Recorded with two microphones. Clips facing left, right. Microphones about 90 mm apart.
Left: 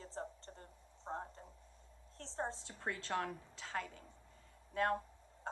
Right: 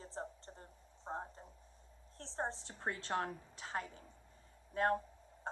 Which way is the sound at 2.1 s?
20° right (ahead or behind).